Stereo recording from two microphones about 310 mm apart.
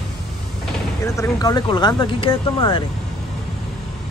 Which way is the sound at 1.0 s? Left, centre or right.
Centre.